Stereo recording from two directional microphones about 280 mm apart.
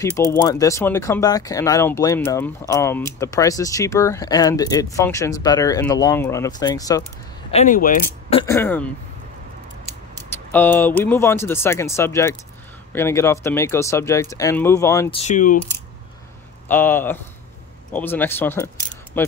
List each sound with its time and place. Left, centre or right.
0.0 s speech: centre
7.5 s speech: left; by 8.9 s centre
10.5 s speech: centre; by 15.6 s left
16.6 s speech: centre